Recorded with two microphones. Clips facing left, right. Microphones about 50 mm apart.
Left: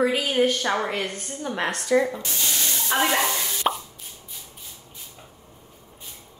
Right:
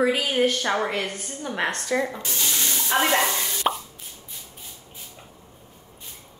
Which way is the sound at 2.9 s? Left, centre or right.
Centre.